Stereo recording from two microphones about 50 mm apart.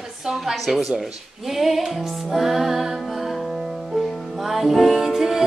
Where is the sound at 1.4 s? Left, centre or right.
Centre.